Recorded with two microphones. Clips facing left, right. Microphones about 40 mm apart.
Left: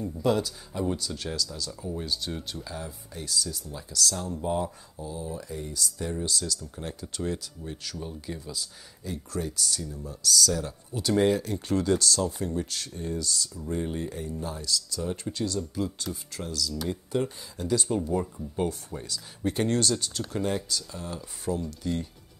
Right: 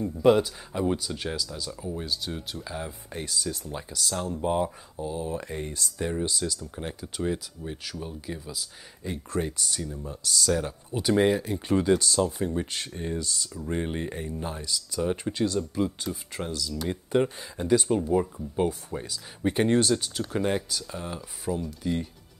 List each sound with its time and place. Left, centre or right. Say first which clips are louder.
0.0 s speech: right 5 dB; right
2.0 s speech: left 1 dB; centre
2.7 s speech: right 3 dB; right
3.9 s speech: left 1 dB; right
5.1 s speech: right 3 dB; right
6.0 s speech: right 3 dB; right
7.0 s speech: right 3 dB; centre
9.0 s speech: right 3 dB; right
18.0 s speech: right 4 dB; centre
21.5 s speech: right 1 dB; centre